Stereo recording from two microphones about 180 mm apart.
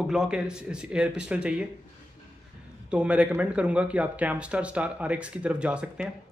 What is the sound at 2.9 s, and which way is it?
Speech, 5° right (ahead or behind).